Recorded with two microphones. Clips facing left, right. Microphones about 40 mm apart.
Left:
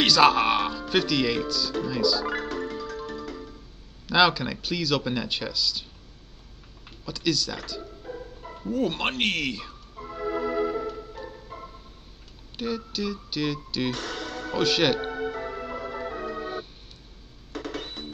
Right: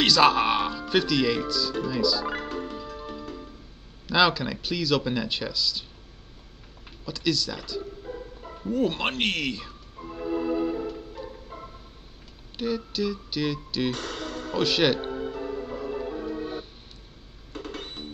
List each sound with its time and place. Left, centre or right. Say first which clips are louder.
0.0 s speech: left 1 dB; centre
4.1 s speech: left 1 dB; centre
7.1 s speech: even; centre
10.1 s organ: even; left
10.7 s organ: left 1 dB; centre
11.1 s music: even; centre
12.5 s speech: right 2 dB; centre
15.0 s music: left 1 dB; left
15.7 s music: right 1 dB; left
17.5 s music: left 3 dB; centre